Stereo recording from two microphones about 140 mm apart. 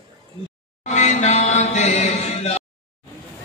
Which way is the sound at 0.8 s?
55° left (ahead or behind).